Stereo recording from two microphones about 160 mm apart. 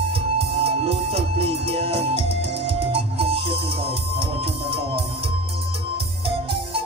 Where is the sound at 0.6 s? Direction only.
35° right (ahead or behind).